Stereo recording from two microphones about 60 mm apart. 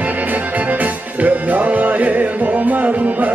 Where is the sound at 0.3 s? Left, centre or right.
Right.